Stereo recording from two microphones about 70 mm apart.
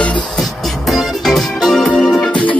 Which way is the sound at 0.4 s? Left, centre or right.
Centre.